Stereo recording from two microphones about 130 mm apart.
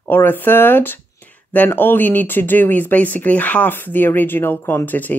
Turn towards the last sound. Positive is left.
turn(degrees=15)  # may be behind; listen again after turning